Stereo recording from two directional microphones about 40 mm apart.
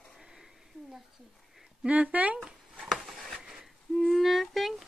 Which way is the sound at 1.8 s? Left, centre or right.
Right.